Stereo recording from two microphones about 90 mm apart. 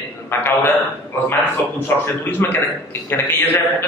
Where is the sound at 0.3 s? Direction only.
25° left (ahead or behind).